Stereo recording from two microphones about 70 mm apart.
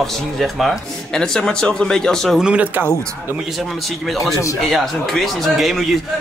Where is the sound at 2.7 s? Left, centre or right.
Right.